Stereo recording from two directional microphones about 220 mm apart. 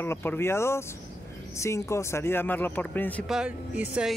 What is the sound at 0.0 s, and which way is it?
Speech, 10° left (ahead or behind).